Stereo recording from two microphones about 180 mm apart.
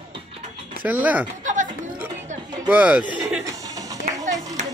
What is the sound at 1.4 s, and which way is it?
Music, 45° right (ahead or behind).